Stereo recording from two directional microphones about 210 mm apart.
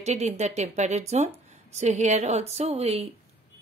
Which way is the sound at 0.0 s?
30° right (ahead or behind).